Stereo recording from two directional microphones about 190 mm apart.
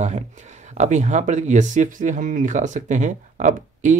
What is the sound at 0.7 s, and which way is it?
Speech, 40° right (ahead or behind).